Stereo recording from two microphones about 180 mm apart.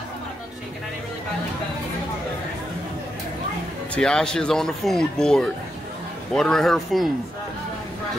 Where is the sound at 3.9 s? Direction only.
5° left (ahead or behind).